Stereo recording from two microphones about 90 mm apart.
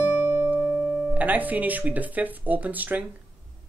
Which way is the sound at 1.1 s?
20° right (ahead or behind).